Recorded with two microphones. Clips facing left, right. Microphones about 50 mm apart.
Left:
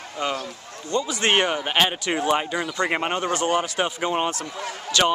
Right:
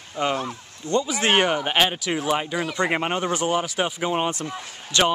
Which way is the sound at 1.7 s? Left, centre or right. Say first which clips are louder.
Even; centre.